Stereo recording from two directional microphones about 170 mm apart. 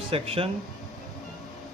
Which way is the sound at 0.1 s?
35° right (ahead or behind).